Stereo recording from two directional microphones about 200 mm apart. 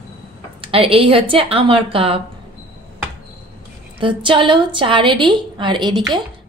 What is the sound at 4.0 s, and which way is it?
A woman's voice, 25° right (ahead or behind).